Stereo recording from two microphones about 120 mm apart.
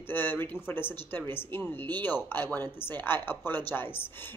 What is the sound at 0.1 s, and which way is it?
Speech, 15° left (ahead or behind).